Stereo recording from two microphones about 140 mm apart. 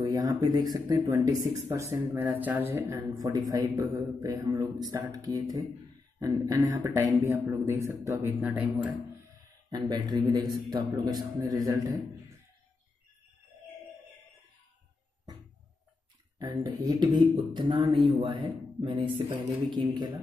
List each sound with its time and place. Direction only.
0.0 s speech: 25° right (ahead or behind)
9.7 s speech: 30° right (ahead or behind)
16.3 s speech: 25° right (ahead or behind)